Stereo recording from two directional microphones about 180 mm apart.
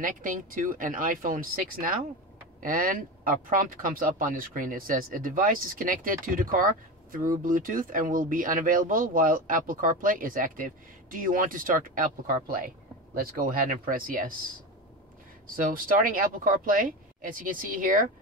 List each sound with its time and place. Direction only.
0.0 s speech: 45° right (ahead or behind)
15.4 s speech: 50° right (ahead or behind)